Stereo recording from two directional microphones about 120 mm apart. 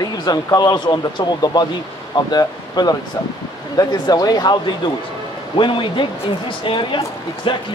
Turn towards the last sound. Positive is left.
turn(degrees=45)  # may be behind; listen again after turning